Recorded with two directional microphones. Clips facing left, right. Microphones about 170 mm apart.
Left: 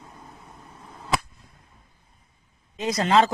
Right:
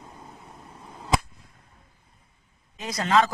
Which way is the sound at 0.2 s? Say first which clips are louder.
Right 1 dB; 5° right (ahead or behind).